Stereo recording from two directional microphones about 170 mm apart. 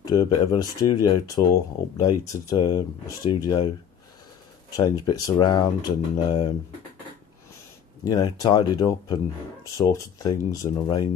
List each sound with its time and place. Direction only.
0.0 s speech: 25° left (ahead or behind)
4.6 s speech: 20° left (ahead or behind)
8.0 s speech: 20° left (ahead or behind)